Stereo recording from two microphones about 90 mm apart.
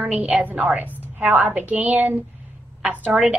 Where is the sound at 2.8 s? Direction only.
5° right (ahead or behind).